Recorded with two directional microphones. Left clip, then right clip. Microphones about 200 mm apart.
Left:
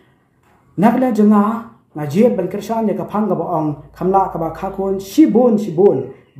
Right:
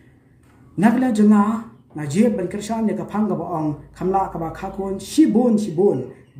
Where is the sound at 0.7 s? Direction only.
Centre (ahead or behind).